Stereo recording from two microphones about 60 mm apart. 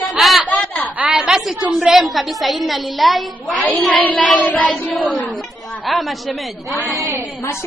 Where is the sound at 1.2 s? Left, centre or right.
Centre.